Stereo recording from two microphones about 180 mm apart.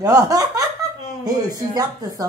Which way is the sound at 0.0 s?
20° right (ahead or behind).